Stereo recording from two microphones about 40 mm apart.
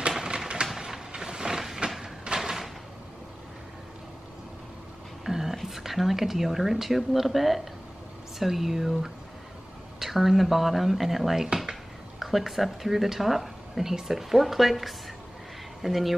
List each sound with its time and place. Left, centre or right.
0.7 s mechanisms: centre
1.8 s a sound: right
2.2 s door: centre
5.2 s a sound: centre
5.6 s a woman's voice: centre
11.4 s speech: centre
12.2 s a woman's voice: centre